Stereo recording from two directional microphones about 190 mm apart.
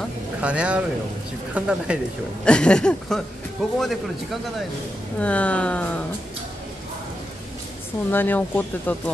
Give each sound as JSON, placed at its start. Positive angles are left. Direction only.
{"t": 0.4, "sound": "speech", "side_deg": -5}
{"t": 2.4, "sound": "speech", "side_deg": 5}
{"t": 8.1, "sound": "speech", "side_deg": 10}